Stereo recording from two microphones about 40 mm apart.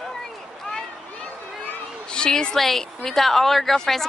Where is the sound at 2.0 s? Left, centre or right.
Centre.